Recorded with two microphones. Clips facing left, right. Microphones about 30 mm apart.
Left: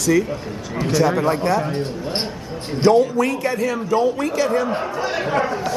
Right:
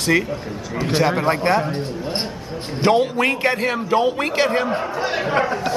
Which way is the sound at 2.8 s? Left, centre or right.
Right.